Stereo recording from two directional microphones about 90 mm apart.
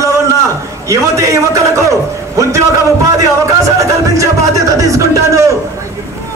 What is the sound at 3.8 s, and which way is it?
A man's voice, 35° right (ahead or behind).